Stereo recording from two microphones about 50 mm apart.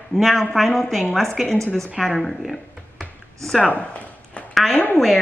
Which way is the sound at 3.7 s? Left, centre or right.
Left.